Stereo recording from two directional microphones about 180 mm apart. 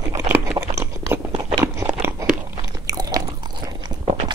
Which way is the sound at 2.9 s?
20° right (ahead or behind).